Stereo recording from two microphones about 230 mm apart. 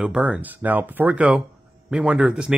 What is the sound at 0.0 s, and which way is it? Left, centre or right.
Speech, centre.